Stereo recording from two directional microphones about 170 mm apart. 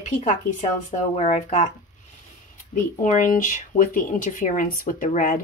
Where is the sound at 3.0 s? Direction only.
50° left (ahead or behind).